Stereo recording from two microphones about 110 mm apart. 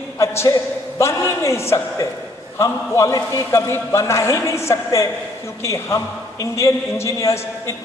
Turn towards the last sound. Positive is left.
turn(degrees=25)  # may be behind; listen again after turning